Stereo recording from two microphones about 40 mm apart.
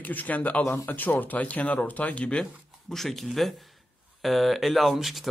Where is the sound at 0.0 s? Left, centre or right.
Left.